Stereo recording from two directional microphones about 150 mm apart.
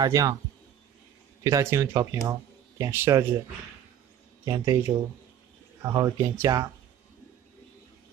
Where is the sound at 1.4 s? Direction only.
20° right (ahead or behind).